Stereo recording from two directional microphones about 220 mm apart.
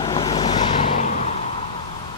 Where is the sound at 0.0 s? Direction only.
25° left (ahead or behind).